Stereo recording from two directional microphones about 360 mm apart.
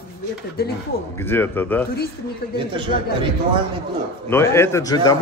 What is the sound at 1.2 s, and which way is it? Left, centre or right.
Speech, centre.